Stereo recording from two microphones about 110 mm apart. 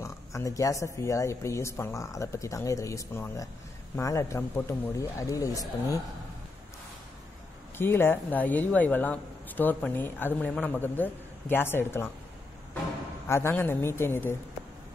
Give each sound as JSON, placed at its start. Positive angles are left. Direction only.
{"t": 0.0, "sound": "speech", "side_deg": 30}
{"t": 7.7, "sound": "speech", "side_deg": 20}
{"t": 13.3, "sound": "speech", "side_deg": 20}